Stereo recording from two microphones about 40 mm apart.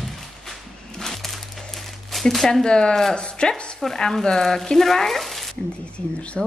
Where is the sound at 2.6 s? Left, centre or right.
Left.